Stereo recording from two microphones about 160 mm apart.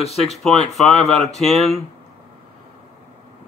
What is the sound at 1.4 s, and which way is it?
Speech, centre (ahead or behind).